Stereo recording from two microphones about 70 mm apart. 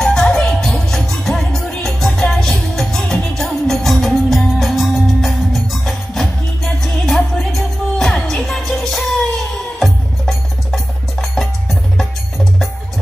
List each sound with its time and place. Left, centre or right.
0.0 s music: centre